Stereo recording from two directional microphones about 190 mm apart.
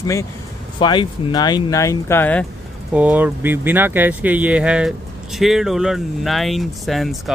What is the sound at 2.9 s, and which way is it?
Speech, 5° right (ahead or behind).